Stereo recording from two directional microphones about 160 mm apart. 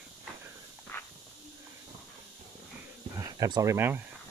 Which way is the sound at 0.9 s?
15° left (ahead or behind).